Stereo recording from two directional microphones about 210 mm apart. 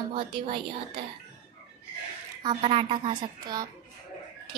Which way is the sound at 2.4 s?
25° right (ahead or behind).